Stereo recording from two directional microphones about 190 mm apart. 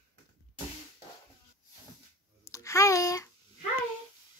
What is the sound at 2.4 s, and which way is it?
Babbling, 15° left (ahead or behind).